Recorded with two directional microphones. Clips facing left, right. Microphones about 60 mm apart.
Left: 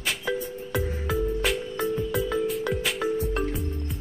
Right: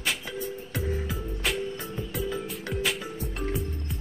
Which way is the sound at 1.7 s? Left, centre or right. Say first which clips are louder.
Left 8 dB; left.